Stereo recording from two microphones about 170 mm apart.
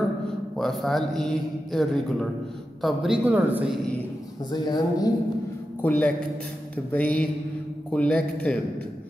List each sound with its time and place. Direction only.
0.6 s a man's voice: centre (ahead or behind)
4.5 s a woman's voice: 25° left (ahead or behind)
5.8 s a man's voice: 10° left (ahead or behind)